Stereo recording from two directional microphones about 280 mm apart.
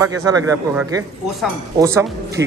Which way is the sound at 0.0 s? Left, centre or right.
Centre.